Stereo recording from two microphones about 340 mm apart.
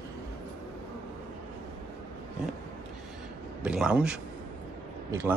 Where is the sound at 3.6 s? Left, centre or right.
Centre.